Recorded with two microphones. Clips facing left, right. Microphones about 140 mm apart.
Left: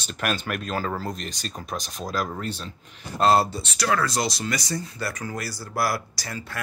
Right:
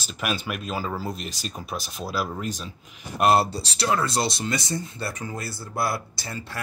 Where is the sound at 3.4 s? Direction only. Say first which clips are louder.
Even; 35° right (ahead or behind).